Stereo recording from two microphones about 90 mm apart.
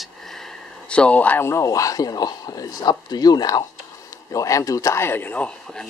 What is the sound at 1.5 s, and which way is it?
A man's voice, 35° left (ahead or behind).